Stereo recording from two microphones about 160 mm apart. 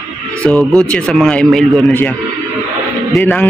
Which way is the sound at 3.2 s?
10° left (ahead or behind).